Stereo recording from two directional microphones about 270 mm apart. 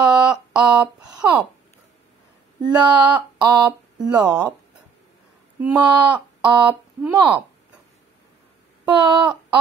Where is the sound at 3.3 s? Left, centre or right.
Centre.